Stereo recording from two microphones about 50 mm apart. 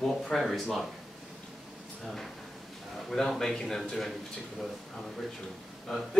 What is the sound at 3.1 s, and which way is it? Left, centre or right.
A man's voice, centre.